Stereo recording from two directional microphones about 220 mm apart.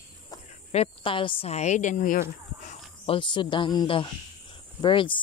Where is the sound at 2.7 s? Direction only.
25° left (ahead or behind).